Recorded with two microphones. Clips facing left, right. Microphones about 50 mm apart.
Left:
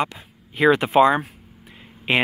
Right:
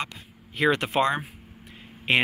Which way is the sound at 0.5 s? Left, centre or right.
Centre.